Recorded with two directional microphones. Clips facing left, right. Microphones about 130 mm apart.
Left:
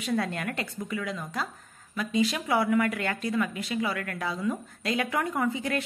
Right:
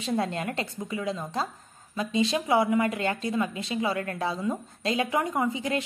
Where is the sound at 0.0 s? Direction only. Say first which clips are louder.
Right 1 dB; 25° right (ahead or behind).